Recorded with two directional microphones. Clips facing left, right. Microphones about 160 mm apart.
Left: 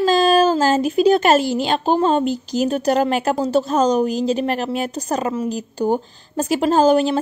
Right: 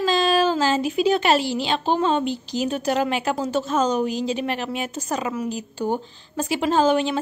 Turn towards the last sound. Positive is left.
turn(degrees=40)  # may be behind; listen again after turning